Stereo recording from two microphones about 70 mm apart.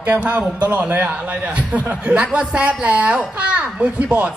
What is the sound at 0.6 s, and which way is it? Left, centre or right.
Speech, right.